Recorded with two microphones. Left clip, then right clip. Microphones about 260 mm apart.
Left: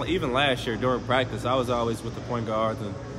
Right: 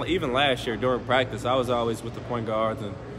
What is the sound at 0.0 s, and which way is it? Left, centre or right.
A man's voice, centre.